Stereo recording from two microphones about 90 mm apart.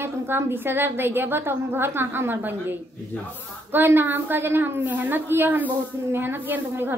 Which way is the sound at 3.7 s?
20° right (ahead or behind).